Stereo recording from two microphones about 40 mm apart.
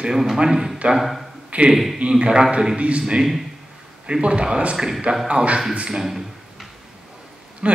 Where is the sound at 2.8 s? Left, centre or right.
Right.